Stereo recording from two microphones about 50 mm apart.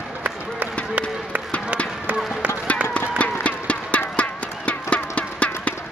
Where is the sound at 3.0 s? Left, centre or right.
Left.